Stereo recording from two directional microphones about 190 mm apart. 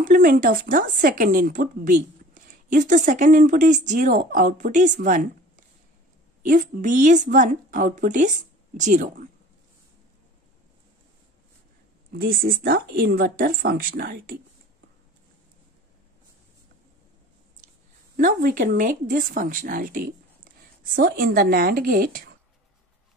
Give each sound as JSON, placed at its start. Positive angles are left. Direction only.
{"t": 0.0, "sound": "speech", "side_deg": -50}
{"t": 6.4, "sound": "a woman's voice", "side_deg": -45}
{"t": 12.1, "sound": "speech", "side_deg": -55}
{"t": 18.1, "sound": "speech", "side_deg": -45}